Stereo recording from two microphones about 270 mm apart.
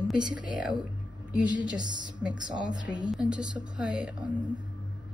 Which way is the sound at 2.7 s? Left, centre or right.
Centre.